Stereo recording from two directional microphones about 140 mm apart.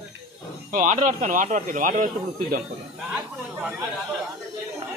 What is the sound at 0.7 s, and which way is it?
Speech, 70° right (ahead or behind).